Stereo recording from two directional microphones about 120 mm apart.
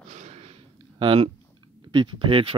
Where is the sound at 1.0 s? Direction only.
50° right (ahead or behind).